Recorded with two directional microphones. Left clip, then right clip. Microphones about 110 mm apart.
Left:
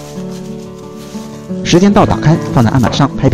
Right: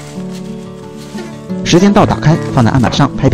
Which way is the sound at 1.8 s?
25° right (ahead or behind).